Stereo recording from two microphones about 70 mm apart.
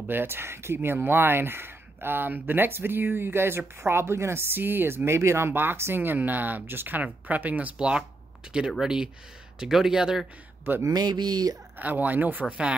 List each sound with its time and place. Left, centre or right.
0.1 s speech: right; by 10.2 s centre
10.8 s speech: right
11.8 s speech: right